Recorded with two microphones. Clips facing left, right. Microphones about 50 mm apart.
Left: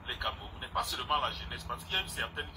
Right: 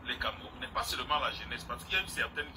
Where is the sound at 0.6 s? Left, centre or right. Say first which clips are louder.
Left 1 dB; right.